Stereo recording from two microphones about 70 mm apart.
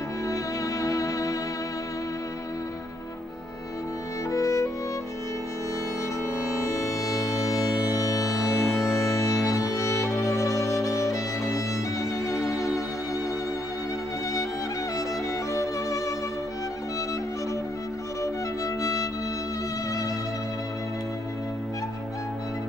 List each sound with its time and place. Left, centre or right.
0.3 s music: left
4.3 s music: left
6.5 s music: left
12.4 s music: centre
18.2 s music: left